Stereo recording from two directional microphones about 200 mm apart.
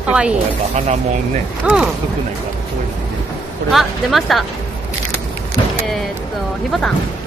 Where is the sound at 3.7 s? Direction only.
Centre (ahead or behind).